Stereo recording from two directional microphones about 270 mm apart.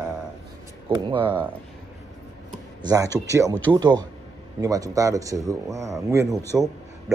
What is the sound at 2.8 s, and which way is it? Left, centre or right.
A man's voice, centre.